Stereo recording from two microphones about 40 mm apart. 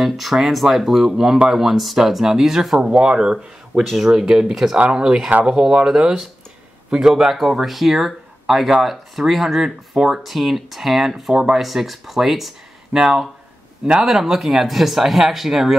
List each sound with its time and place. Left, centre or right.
0.0 s speech: centre
2.8 s speech: right
7.1 s speech: centre
12.9 s speech: centre